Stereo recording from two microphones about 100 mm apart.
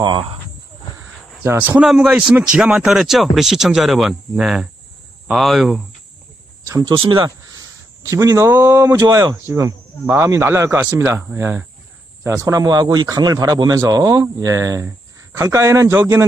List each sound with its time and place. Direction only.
0.0 s speech: 55° right (ahead or behind)
1.4 s speech: 20° right (ahead or behind)
1.8 s a man's voice: 5° right (ahead or behind)
6.8 s speech: 55° right (ahead or behind)
7.2 s a man's voice: 35° right (ahead or behind)